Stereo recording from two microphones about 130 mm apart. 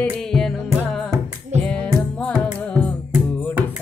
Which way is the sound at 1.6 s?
10° left (ahead or behind).